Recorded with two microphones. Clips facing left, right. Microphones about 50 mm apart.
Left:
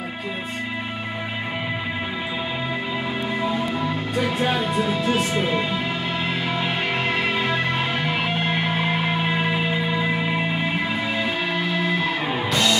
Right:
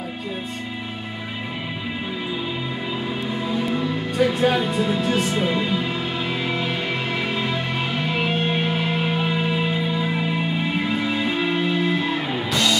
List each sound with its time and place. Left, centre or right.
4.2 s speech: centre
5.0 s music: centre
8.7 s music: left
12.3 s music: left